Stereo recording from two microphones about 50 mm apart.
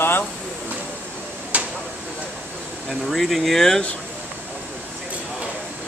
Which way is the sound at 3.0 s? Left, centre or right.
Centre.